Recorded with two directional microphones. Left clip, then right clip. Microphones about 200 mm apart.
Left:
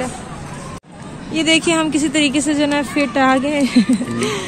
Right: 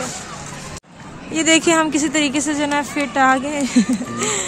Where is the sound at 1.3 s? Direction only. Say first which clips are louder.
Even; 30° right (ahead or behind).